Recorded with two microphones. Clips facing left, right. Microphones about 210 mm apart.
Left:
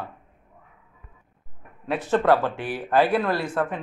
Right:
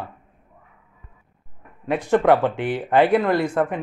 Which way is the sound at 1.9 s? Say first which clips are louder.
Right 3 dB; 15° right (ahead or behind).